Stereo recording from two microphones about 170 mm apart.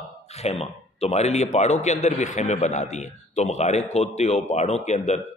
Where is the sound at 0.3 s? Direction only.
40° left (ahead or behind).